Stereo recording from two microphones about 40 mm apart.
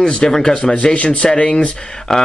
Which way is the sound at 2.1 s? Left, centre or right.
Centre.